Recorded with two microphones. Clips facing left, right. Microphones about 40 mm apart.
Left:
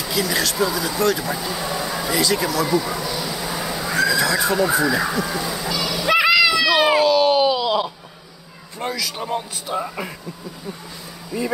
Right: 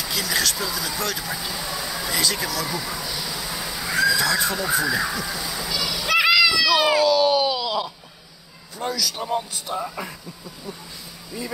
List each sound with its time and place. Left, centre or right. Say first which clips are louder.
0.0 s speech: left 3 dB; centre
1.7 s vehicle: left 5 dB; centre
3.8 s neigh: left 1 dB; centre
6.4 s cat: left 2 dB; left
7.4 s wail: left 5 dB; centre
8.7 s a man's voice: left 1 dB; left
9.8 s speech: left 3 dB; centre
11.3 s speech: left 8 dB; centre